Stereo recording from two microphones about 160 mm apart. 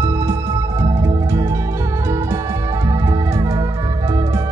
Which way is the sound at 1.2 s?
20° right (ahead or behind).